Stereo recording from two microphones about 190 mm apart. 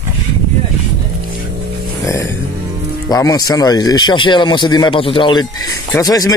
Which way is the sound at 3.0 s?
20° left (ahead or behind).